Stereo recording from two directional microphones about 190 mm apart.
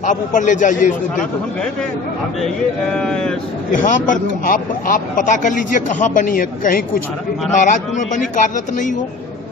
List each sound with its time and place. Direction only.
0.0 s a man's voice: 40° left (ahead or behind)
2.4 s speech: 5° left (ahead or behind)
3.8 s a man's voice: 45° left (ahead or behind)